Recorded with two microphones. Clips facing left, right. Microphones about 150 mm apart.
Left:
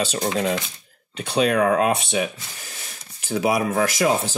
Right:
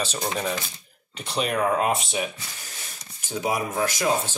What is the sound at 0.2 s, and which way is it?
Speech, 90° left.